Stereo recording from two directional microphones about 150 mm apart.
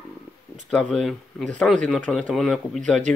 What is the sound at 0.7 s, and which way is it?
Speech, 5° left (ahead or behind).